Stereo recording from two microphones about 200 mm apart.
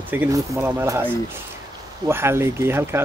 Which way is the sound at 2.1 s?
10° right (ahead or behind).